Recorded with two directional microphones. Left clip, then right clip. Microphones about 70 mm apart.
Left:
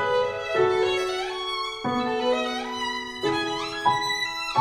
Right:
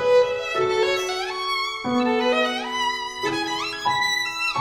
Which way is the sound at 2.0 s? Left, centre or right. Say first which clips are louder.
Right 5 dB; left.